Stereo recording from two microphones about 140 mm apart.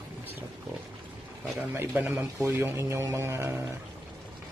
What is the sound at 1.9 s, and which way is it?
A man's voice, 10° right (ahead or behind).